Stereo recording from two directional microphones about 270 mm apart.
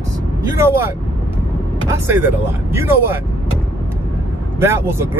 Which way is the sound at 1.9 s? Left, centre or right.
Centre.